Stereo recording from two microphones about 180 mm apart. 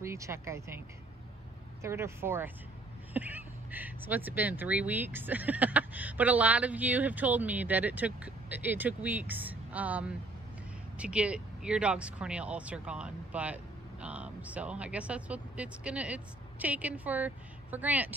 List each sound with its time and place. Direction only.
0.0 s speech: 15° right (ahead or behind)